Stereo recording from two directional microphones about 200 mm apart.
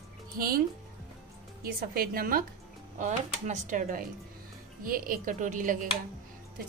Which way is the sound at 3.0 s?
35° right (ahead or behind).